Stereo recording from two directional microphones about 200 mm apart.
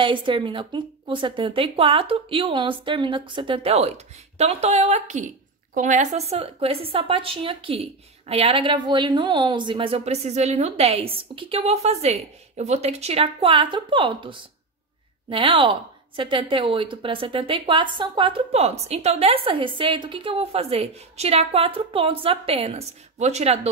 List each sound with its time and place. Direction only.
0.0 s a woman's voice: 25° right (ahead or behind)